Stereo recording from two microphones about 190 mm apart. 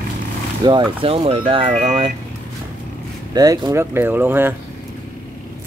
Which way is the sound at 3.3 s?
20° right (ahead or behind).